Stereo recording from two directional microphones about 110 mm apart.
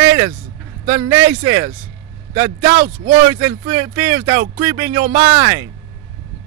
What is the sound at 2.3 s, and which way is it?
Speech, 35° right (ahead or behind).